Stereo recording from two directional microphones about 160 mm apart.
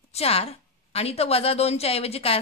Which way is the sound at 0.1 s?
40° left (ahead or behind).